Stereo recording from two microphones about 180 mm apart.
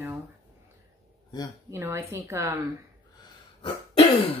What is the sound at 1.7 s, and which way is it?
Speech, 15° right (ahead or behind).